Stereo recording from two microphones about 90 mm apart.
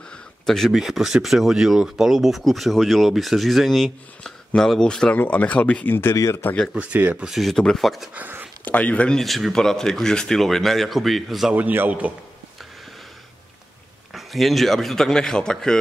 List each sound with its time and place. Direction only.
0.1 s speech: 5° left (ahead or behind)
6.7 s a man's voice: 15° right (ahead or behind)
7.2 s speech: centre (ahead or behind)
8.1 s speech: 20° right (ahead or behind)
8.6 s speech: 15° left (ahead or behind)
9.2 s speech: centre (ahead or behind)
11.5 s a man's voice: 20° right (ahead or behind)
14.1 s speech: centre (ahead or behind)